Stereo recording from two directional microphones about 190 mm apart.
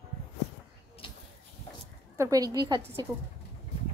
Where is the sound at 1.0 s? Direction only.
25° left (ahead or behind).